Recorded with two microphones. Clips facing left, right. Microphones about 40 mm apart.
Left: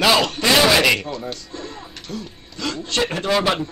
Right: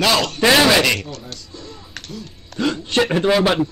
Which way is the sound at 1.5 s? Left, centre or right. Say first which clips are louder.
Left 4 dB; left.